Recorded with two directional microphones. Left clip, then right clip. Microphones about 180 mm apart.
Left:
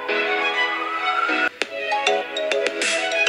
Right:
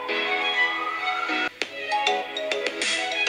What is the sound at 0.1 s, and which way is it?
Music, 45° left (ahead or behind).